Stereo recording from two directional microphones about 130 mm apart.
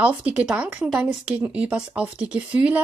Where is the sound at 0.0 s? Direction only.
10° right (ahead or behind).